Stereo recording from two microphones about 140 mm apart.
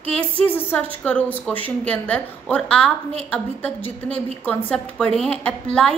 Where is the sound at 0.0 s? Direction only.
10° left (ahead or behind).